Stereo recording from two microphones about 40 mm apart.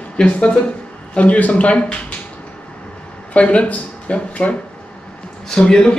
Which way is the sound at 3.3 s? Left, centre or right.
Left.